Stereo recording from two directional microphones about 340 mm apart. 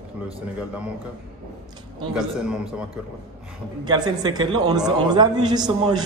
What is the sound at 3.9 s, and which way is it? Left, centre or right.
A man's voice, centre.